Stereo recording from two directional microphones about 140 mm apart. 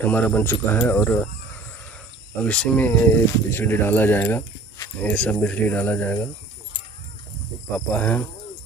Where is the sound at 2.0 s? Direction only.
5° left (ahead or behind).